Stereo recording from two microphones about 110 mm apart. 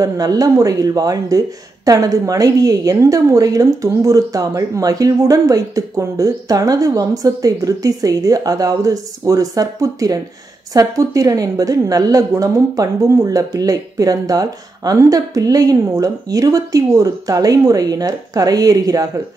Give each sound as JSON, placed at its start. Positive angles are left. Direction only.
{"t": 0.0, "sound": "a woman's voice", "side_deg": -35}